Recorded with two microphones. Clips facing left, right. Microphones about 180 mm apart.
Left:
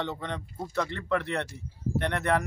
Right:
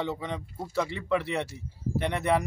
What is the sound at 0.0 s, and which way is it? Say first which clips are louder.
Speech: right 1 dB; 10° right (ahead or behind).